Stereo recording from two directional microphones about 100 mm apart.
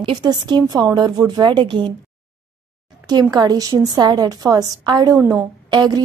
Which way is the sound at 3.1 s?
40° right (ahead or behind).